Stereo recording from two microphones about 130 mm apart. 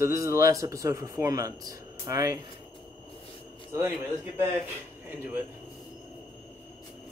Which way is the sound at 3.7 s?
20° right (ahead or behind).